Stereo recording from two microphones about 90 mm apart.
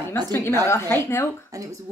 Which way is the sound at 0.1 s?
25° left (ahead or behind).